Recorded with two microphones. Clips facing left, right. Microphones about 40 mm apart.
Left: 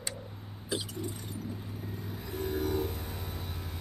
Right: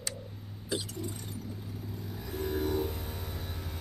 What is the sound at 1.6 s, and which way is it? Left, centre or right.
Vehicle, left.